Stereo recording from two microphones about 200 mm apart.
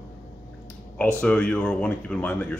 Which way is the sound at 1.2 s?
5° left (ahead or behind).